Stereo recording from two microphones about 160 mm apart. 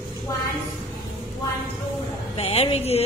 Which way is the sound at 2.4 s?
40° left (ahead or behind).